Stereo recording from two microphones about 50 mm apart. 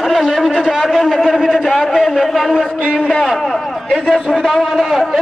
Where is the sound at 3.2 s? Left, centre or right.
Centre.